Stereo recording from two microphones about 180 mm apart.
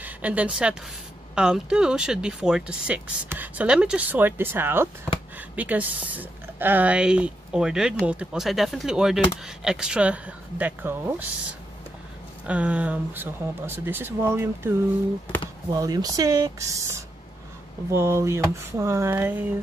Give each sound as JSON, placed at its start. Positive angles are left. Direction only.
{"t": 0.0, "sound": "a woman's voice", "side_deg": -10}
{"t": 12.4, "sound": "speech", "side_deg": -5}